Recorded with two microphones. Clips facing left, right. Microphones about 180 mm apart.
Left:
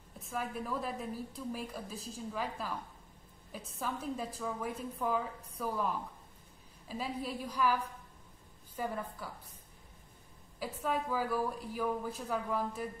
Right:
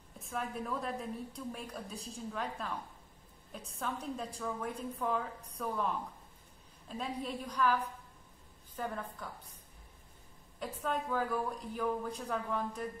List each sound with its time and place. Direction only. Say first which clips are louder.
0.2 s a woman's voice: even; centre (ahead or behind)
10.6 s a woman's voice: left 1 dB; 5° left (ahead or behind)